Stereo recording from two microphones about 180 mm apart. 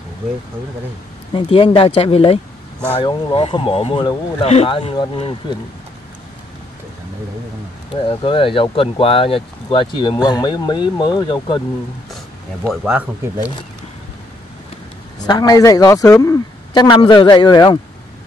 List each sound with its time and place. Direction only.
1.3 s speech: 30° left (ahead or behind)
7.9 s speech: 30° left (ahead or behind)
12.6 s speech: 5° right (ahead or behind)
15.2 s speech: 20° left (ahead or behind)